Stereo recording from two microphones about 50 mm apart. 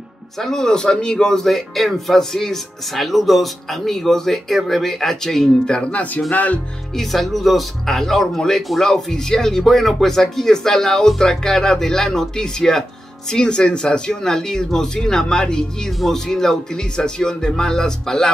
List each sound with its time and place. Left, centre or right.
0.4 s speech: centre
6.3 s speech: left
7.0 s speech: centre